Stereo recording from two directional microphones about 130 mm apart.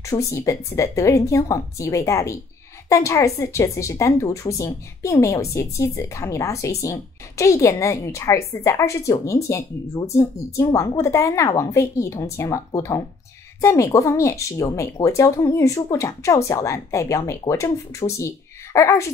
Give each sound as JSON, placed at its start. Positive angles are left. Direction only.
{"t": 0.0, "sound": "a woman's voice", "side_deg": 25}